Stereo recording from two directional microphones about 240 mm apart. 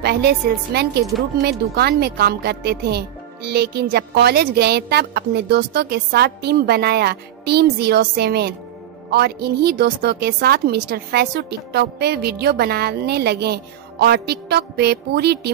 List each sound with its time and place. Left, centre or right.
0.0 s a woman's voice: right